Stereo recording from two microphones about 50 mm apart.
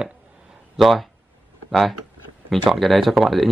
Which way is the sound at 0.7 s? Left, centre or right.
Centre.